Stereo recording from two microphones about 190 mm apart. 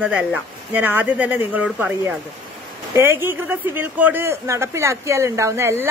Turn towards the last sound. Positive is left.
turn(degrees=-10)  # may be behind; listen again after turning